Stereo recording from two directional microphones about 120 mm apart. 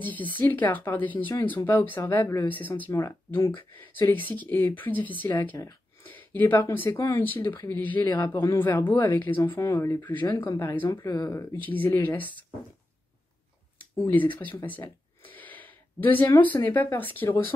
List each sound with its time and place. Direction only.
0.0 s speech: 15° left (ahead or behind)
8.7 s speech: 35° left (ahead or behind)
9.0 s speech: 15° left (ahead or behind)
10.0 s speech: 15° left (ahead or behind)
13.9 s speech: 15° left (ahead or behind)
15.2 s a sound: 15° left (ahead or behind)
16.3 s speech: 15° left (ahead or behind)